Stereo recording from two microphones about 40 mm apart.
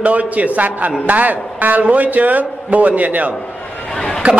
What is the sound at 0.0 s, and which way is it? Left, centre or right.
A man's voice, right.